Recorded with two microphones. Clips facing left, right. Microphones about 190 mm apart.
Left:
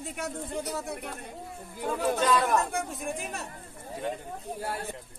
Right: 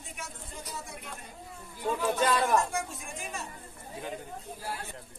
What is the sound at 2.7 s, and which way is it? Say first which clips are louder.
Speech: left 4 dB; 60° left (ahead or behind).